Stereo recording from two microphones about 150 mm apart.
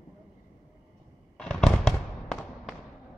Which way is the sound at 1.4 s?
5° left (ahead or behind).